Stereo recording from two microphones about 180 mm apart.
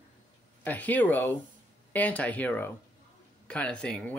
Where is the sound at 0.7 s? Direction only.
10° left (ahead or behind).